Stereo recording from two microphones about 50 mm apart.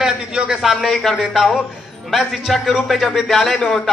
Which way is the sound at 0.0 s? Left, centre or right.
Centre.